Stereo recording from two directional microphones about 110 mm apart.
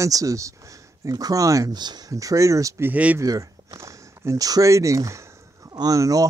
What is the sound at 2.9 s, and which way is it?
Speech, 15° right (ahead or behind).